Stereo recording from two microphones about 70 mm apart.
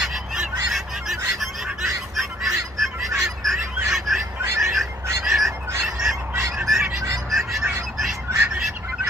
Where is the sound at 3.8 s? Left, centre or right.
Centre.